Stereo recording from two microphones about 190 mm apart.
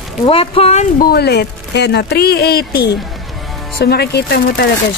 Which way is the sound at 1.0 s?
60° left (ahead or behind).